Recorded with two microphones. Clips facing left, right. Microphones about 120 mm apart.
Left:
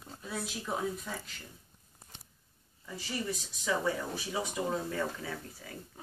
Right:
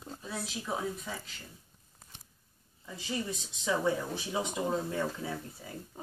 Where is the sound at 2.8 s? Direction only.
20° right (ahead or behind).